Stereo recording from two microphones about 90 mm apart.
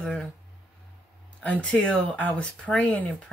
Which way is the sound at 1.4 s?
15° left (ahead or behind).